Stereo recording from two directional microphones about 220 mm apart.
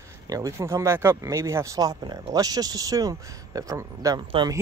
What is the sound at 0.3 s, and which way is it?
Speech, 15° right (ahead or behind).